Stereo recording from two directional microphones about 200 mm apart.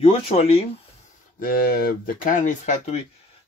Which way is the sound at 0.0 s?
30° left (ahead or behind).